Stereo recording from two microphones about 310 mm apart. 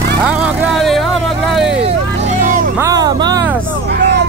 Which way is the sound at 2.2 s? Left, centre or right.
Right.